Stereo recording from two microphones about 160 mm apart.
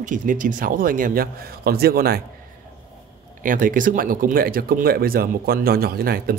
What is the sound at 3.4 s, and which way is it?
Speech, 60° right (ahead or behind).